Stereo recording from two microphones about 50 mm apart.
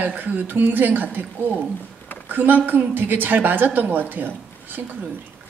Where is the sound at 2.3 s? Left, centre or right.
Right.